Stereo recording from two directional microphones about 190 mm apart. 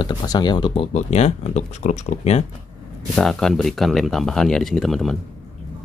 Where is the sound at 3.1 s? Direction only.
Centre (ahead or behind).